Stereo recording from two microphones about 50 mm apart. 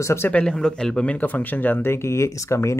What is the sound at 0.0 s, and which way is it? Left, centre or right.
Speech, left.